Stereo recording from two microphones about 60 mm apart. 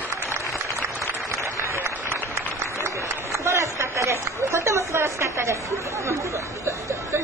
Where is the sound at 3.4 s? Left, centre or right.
Right.